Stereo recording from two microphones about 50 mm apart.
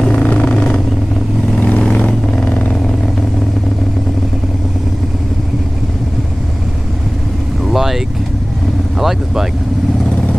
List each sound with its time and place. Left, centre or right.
0.0 s vehicle: left
7.7 s vehicle: centre
9.0 s vehicle: centre